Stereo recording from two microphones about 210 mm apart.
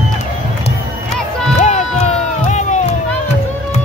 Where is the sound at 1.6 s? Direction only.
35° left (ahead or behind).